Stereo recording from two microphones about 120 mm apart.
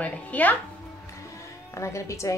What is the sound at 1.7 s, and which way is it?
Speech, 25° left (ahead or behind).